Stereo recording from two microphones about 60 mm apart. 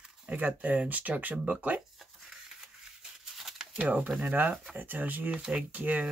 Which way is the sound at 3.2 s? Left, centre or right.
Centre.